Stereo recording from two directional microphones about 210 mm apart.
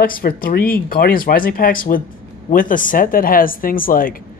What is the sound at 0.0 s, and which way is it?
Speech, 45° left (ahead or behind).